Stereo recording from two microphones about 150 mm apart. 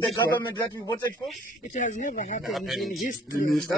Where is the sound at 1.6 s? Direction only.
55° left (ahead or behind).